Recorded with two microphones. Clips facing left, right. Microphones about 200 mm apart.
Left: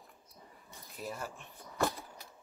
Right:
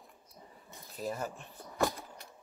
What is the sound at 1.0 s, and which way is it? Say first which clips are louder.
Speech: right 5 dB; 40° right (ahead or behind).